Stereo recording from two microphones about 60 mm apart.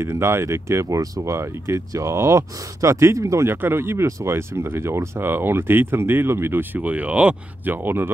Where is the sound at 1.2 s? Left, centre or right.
Right.